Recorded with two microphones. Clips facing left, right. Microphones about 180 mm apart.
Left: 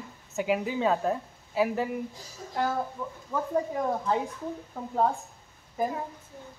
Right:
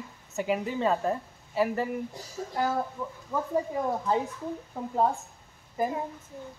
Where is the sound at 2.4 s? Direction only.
50° right (ahead or behind).